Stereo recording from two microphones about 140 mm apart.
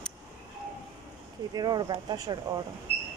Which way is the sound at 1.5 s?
30° right (ahead or behind).